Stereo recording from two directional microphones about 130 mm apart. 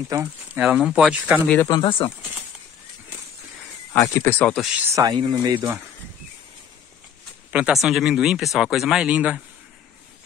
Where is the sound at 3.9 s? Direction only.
20° left (ahead or behind).